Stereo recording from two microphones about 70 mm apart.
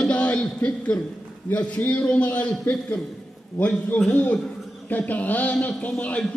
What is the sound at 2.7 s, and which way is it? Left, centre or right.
A man's voice, left.